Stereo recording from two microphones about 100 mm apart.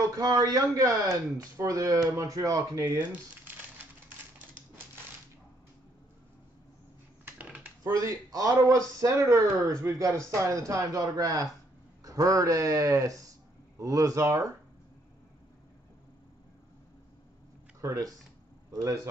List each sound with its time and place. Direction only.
0.2 s speech: 40° right (ahead or behind)
3.1 s crumpling: 20° right (ahead or behind)
7.3 s a sound: 15° right (ahead or behind)
7.8 s speech: 35° right (ahead or behind)
17.7 s speech: 35° right (ahead or behind)